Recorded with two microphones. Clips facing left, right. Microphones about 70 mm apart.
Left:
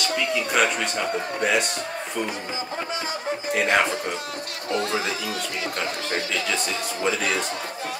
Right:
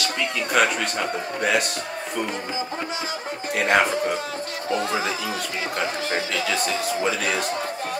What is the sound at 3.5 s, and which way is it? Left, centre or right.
Speech, centre.